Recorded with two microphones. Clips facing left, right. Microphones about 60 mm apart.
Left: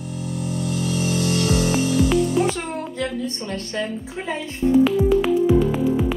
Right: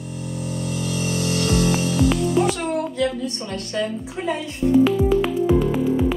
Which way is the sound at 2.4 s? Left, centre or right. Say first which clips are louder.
Right 3 dB; left.